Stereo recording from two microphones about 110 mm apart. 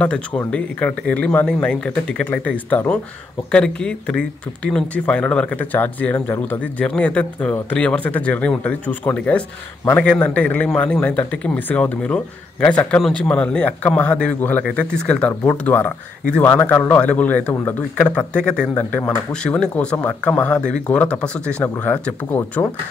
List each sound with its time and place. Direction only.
0.0 s a man's voice: 10° left (ahead or behind)